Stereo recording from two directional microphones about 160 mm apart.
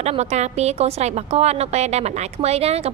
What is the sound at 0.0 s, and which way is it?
A woman's voice, 45° right (ahead or behind).